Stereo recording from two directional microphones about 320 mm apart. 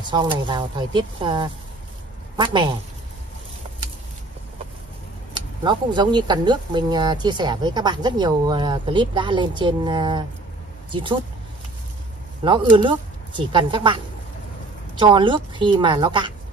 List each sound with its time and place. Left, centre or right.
0.0 s speech: centre
5.3 s speech: centre
12.4 s speech: centre